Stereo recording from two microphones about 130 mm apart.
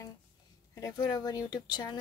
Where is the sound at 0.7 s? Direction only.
30° left (ahead or behind).